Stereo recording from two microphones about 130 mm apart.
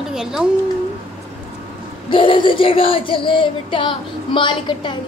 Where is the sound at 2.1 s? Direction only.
40° left (ahead or behind).